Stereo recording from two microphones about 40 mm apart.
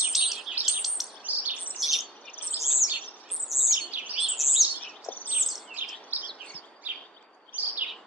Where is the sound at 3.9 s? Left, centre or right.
Right.